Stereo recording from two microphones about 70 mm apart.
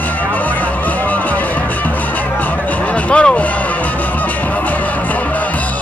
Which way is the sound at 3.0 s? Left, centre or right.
Centre.